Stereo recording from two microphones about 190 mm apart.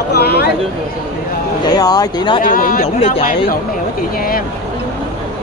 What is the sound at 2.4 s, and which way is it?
Speech, 50° left (ahead or behind).